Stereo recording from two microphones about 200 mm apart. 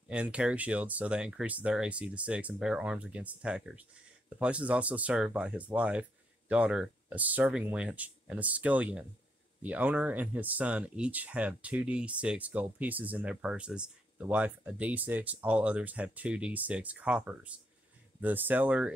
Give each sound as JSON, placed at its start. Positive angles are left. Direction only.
{"t": 0.1, "sound": "speech", "side_deg": -5}